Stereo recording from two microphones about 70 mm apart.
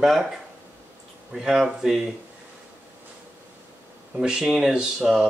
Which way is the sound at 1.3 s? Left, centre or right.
Centre.